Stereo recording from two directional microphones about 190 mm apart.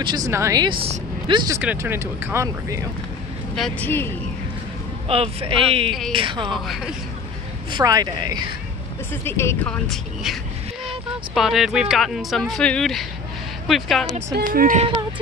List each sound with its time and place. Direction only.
0.0 s speech: 20° right (ahead or behind)
1.6 s speech: 10° right (ahead or behind)
3.5 s speech: centre (ahead or behind)
5.0 s speech: 30° right (ahead or behind)
5.9 s speech: centre (ahead or behind)
6.1 s speech: 25° right (ahead or behind)
6.5 s speech: centre (ahead or behind)
7.7 s speech: 20° right (ahead or behind)
9.2 s speech: 15° left (ahead or behind)
14.3 s speech: 50° right (ahead or behind)